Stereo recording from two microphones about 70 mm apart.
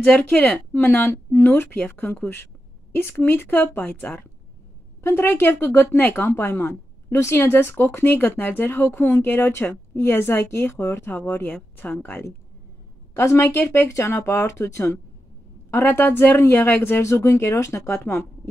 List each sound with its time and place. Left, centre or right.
0.0 s a woman's voice: left
8.6 s a woman's voice: left
13.1 s a woman's voice: left
15.8 s a woman's voice: left
17.0 s speech: left